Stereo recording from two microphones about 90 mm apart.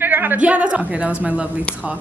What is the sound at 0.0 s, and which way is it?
Speech, 20° right (ahead or behind).